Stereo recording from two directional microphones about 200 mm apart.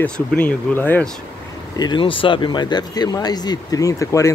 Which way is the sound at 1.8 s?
25° left (ahead or behind).